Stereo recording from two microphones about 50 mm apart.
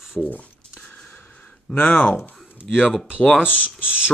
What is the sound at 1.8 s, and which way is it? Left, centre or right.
Speech, left.